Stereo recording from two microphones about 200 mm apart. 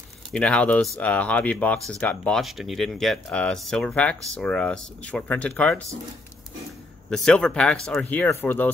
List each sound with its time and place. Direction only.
0.3 s speech: 5° left (ahead or behind)
7.1 s speech: 5° left (ahead or behind)